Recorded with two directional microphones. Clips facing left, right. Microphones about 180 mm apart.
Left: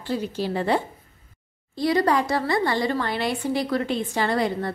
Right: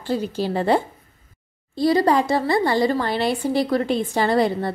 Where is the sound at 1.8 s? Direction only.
30° right (ahead or behind).